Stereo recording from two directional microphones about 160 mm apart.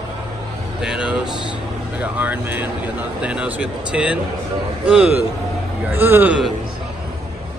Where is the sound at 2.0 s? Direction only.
10° right (ahead or behind).